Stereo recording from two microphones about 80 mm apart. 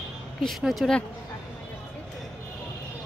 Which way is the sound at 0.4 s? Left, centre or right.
Centre.